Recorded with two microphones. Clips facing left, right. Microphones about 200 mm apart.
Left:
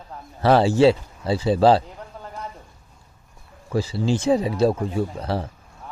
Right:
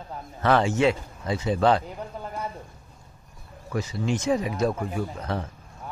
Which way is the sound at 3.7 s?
30° left (ahead or behind).